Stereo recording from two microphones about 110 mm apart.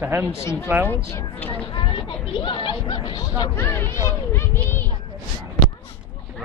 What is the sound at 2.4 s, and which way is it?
Speech, 50° left (ahead or behind).